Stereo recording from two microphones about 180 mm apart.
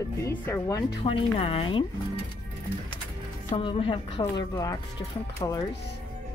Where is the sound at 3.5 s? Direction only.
30° left (ahead or behind).